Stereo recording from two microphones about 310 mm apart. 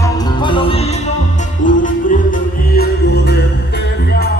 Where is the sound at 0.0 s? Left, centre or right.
Centre.